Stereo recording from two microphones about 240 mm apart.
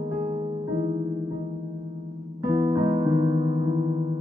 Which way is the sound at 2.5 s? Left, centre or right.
Centre.